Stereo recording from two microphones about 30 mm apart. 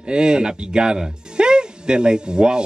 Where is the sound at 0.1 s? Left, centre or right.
Right.